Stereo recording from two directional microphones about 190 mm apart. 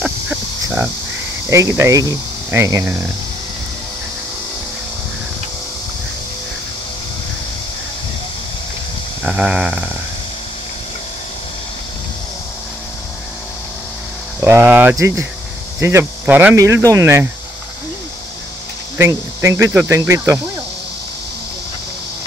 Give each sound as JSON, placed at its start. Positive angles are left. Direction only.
{"t": 0.0, "sound": "cricket", "side_deg": -10}
{"t": 1.5, "sound": "speech", "side_deg": -15}
{"t": 9.2, "sound": "a sound", "side_deg": -5}
{"t": 14.4, "sound": "speech", "side_deg": -10}
{"t": 18.9, "sound": "speech", "side_deg": -15}